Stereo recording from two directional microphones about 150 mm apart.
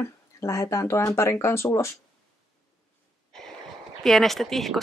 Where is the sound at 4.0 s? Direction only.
Centre (ahead or behind).